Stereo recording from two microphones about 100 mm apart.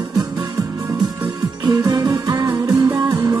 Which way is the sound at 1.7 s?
45° right (ahead or behind).